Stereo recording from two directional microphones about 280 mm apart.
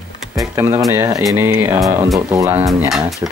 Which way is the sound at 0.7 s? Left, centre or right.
Centre.